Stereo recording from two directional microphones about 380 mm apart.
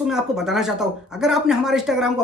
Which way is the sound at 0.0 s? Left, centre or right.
Centre.